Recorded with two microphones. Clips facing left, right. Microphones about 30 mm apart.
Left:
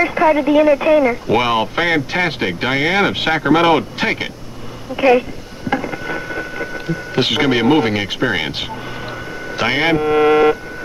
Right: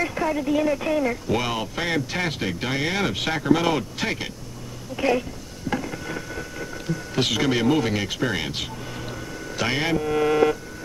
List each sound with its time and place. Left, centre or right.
0.0 s speech: left